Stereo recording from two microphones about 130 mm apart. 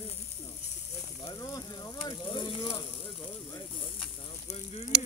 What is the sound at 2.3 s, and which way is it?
Snake, 35° left (ahead or behind).